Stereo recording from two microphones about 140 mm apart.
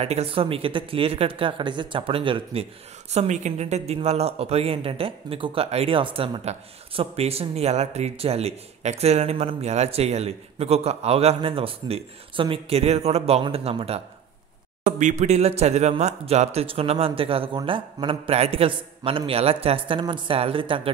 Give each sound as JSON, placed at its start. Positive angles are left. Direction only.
{"t": 0.0, "sound": "speech", "side_deg": -45}
{"t": 3.1, "sound": "speech", "side_deg": -55}
{"t": 14.9, "sound": "speech", "side_deg": -60}